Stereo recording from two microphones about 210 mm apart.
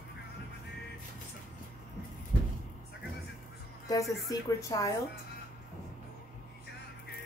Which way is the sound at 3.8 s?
15° left (ahead or behind).